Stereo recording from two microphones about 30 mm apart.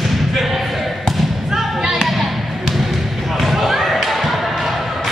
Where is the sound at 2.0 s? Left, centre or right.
Centre.